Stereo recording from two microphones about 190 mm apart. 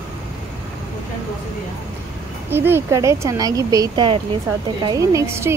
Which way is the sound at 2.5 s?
10° right (ahead or behind).